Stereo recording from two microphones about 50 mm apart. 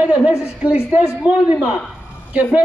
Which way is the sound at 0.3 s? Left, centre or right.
Right.